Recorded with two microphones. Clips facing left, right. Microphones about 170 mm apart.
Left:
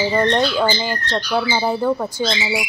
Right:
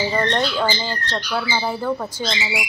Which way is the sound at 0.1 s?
10° left (ahead or behind).